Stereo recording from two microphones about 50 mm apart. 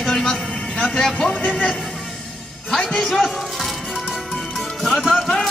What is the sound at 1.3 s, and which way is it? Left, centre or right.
Speech, left.